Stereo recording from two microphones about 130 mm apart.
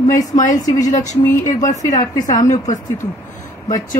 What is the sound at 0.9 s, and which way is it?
A woman's voice, 75° left (ahead or behind).